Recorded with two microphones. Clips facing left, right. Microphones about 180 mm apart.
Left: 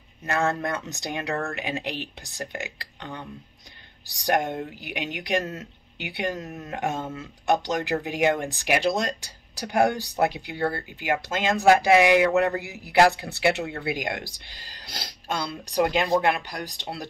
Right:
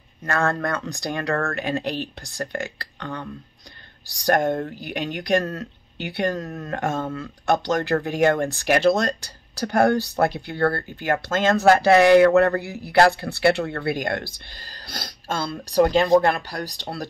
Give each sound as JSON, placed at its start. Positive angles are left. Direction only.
{"t": 0.3, "sound": "speech", "side_deg": 20}
{"t": 14.6, "sound": "a sound", "side_deg": -45}
{"t": 15.3, "sound": "speech", "side_deg": 20}
{"t": 15.7, "sound": "speech", "side_deg": -35}